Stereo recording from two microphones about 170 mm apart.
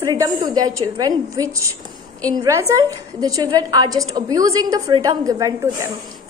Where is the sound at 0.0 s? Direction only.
20° right (ahead or behind).